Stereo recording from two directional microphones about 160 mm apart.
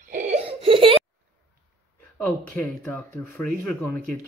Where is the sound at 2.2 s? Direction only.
10° left (ahead or behind).